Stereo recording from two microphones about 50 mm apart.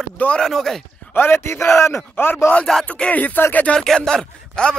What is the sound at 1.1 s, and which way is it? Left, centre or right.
A man's voice, left.